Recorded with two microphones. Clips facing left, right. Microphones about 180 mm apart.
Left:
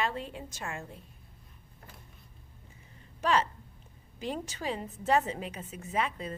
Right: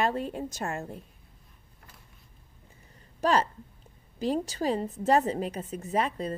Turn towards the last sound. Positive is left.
turn(degrees=-40)  # may be behind; listen again after turning